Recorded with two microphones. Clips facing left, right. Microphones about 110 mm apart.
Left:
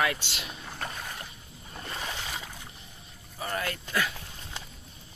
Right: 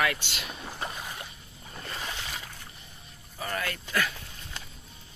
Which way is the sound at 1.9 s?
10° left (ahead or behind).